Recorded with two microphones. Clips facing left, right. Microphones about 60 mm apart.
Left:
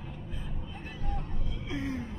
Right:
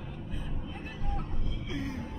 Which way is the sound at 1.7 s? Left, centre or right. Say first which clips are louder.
Left 3 dB; left.